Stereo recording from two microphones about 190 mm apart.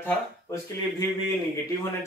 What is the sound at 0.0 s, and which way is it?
Speech, 15° left (ahead or behind).